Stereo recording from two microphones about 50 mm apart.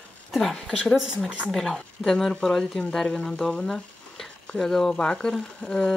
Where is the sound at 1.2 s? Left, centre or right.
Right.